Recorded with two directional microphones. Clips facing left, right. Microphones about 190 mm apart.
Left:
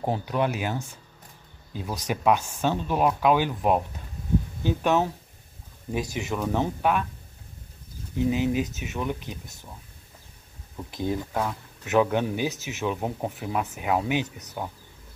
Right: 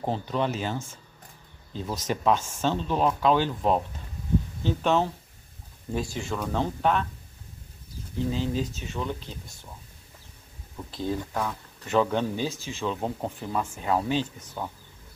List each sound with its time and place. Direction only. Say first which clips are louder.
0.0 s speech: left 2 dB; 10° left (ahead or behind)
8.2 s speech: left 4 dB; 15° left (ahead or behind)
10.9 s speech: left 2 dB; 15° left (ahead or behind)